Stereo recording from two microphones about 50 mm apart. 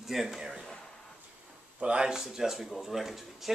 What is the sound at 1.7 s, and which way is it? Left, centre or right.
Speech, centre.